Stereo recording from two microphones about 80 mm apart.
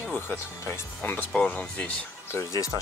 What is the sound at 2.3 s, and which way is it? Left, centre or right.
Speech, left.